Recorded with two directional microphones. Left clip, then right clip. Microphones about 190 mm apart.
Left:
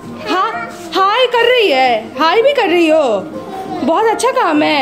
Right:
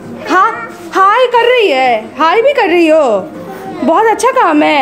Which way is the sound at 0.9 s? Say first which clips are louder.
Right 4 dB; 5° right (ahead or behind).